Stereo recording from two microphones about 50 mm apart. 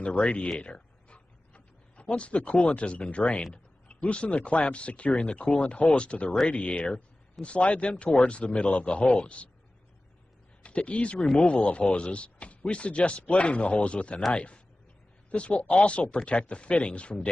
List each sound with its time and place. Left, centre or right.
0.0 s a man's voice: left
0.6 s a sound: left
3.5 s a man's voice: left
10.6 s a man's voice: left